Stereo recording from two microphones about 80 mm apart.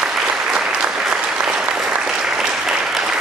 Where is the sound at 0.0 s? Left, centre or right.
Centre.